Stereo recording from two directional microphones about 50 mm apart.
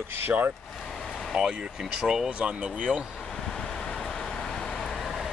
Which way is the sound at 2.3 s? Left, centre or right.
Right.